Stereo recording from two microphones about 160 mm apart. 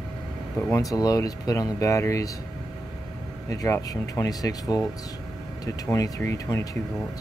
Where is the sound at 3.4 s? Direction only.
20° left (ahead or behind).